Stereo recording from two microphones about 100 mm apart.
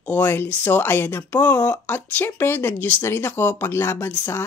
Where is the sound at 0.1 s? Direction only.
20° left (ahead or behind).